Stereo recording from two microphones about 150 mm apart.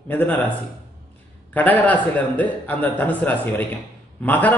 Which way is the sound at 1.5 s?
10° left (ahead or behind).